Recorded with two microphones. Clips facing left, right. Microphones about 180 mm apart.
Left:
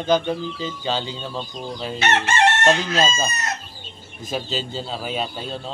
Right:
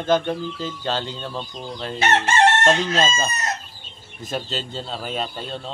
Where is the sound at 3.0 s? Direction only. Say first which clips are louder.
Even; 5° left (ahead or behind).